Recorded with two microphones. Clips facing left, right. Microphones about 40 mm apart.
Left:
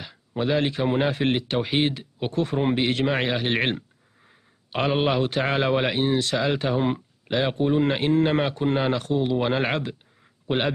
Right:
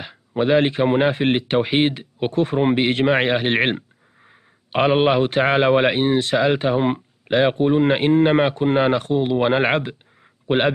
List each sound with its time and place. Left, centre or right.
0.0 s a man's voice: right